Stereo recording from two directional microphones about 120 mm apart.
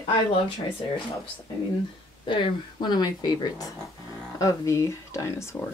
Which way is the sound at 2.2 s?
45° left (ahead or behind).